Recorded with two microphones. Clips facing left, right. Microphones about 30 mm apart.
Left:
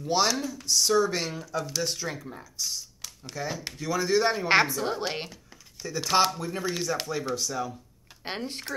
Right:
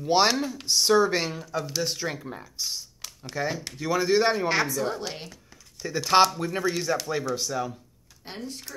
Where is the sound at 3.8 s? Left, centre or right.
Centre.